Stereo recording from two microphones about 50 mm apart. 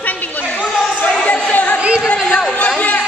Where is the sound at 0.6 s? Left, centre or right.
Left.